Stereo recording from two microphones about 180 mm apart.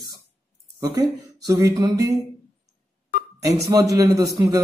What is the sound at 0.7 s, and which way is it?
A man's voice, 20° right (ahead or behind).